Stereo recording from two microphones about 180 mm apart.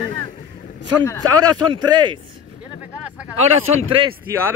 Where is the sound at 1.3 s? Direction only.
25° right (ahead or behind).